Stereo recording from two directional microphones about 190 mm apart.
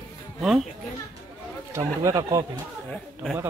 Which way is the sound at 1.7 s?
15° right (ahead or behind).